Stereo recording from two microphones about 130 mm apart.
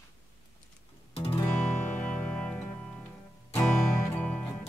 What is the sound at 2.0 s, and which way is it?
Music, 10° left (ahead or behind).